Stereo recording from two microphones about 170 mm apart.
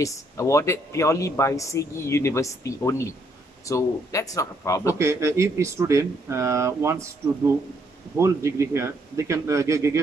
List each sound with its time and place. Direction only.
0.0 s speech: 20° left (ahead or behind)
4.9 s speech: 15° right (ahead or behind)
8.2 s speech: 15° right (ahead or behind)